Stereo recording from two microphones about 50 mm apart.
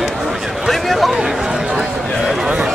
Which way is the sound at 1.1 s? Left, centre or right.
Centre.